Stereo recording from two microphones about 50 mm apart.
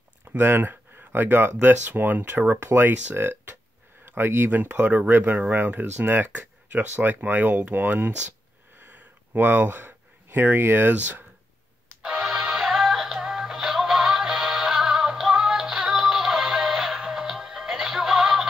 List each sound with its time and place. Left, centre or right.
0.3 s speech: right
2.6 s speech: right
4.5 s speech: right
12.0 s music: centre